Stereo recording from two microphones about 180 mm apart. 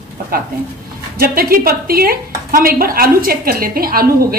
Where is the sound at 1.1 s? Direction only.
55° right (ahead or behind).